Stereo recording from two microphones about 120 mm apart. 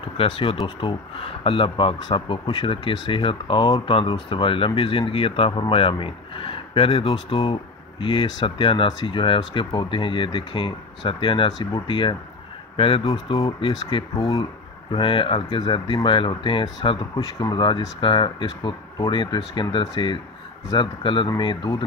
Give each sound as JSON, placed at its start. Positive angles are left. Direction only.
{"t": 0.2, "sound": "speech", "side_deg": 50}
{"t": 12.7, "sound": "speech", "side_deg": 55}